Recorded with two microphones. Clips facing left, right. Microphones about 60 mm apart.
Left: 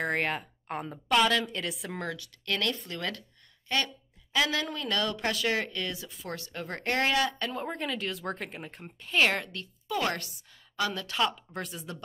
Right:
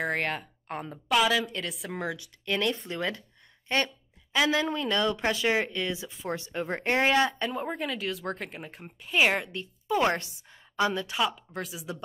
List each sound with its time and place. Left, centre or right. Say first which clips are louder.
0.0 s a woman's voice: even; centre
2.1 s speech: right 3 dB; centre
7.5 s speech: right 2 dB; centre; by 11.1 s right
11.1 s a woman's voice: even; centre